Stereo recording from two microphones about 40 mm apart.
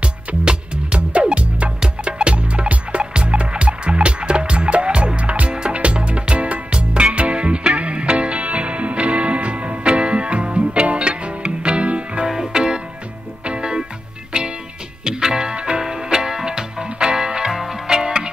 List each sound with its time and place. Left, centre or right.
0.5 s music: right
12.3 s music: centre
17.5 s music: centre
17.8 s music: centre